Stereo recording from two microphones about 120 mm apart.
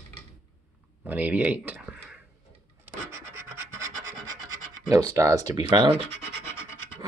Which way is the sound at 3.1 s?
25° right (ahead or behind).